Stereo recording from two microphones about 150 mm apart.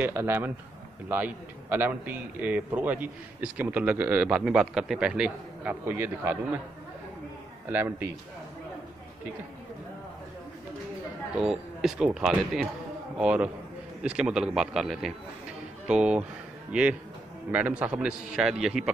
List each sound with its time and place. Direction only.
0.0 s a man's voice: 15° right (ahead or behind)
7.7 s a man's voice: 15° right (ahead or behind)
11.3 s a man's voice: centre (ahead or behind)
17.5 s a man's voice: 10° right (ahead or behind)